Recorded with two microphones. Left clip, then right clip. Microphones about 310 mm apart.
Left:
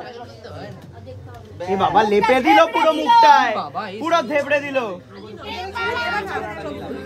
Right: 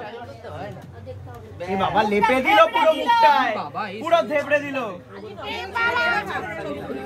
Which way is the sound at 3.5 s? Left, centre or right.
Centre.